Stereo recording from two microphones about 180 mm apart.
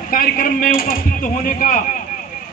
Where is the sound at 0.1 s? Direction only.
50° left (ahead or behind).